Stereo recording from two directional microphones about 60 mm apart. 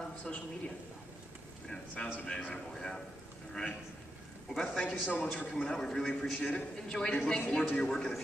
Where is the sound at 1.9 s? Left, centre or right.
Centre.